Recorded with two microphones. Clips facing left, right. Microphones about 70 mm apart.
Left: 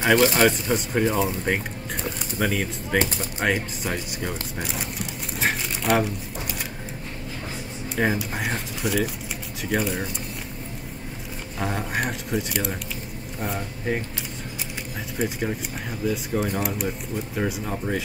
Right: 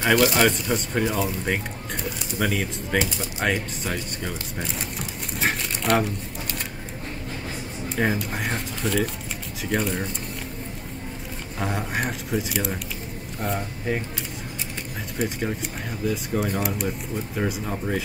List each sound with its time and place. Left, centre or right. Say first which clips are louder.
0.0 s speech: left 1 dB; left
0.4 s speech: left 1 dB; centre
2.3 s speech: even; centre
5.4 s a sound: even; centre
7.9 s speech: left 1 dB; centre
11.6 s speech: even; centre
15.1 s speech: even; centre